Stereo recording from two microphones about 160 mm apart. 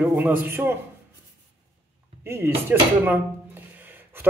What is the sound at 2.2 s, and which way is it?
Speech, 15° right (ahead or behind).